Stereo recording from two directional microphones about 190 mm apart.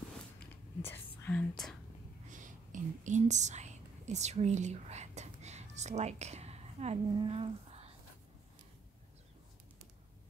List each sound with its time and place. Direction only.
0.8 s whispering: 10° left (ahead or behind)
2.2 s whispering: 40° right (ahead or behind)